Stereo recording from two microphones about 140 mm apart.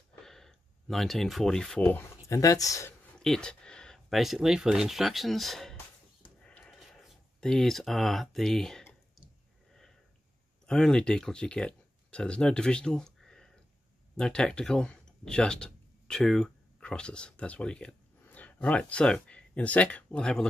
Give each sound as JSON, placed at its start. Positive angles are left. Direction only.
{"t": 0.2, "sound": "speech", "side_deg": 5}
{"t": 2.2, "sound": "speech", "side_deg": 25}
{"t": 3.2, "sound": "speech", "side_deg": 5}
{"t": 6.4, "sound": "a sound", "side_deg": 5}
{"t": 10.7, "sound": "speech", "side_deg": 5}